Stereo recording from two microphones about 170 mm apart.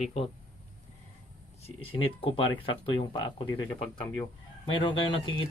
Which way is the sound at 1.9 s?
30° left (ahead or behind).